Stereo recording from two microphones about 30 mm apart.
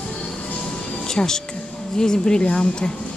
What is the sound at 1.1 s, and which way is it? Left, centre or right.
Speech, left.